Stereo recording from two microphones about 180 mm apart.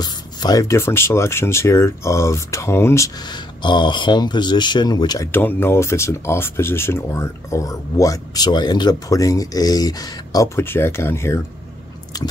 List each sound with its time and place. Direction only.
0.0 s speech: 20° left (ahead or behind)
12.1 s biting: 20° left (ahead or behind)